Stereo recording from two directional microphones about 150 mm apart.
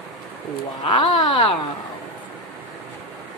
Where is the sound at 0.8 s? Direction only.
35° left (ahead or behind).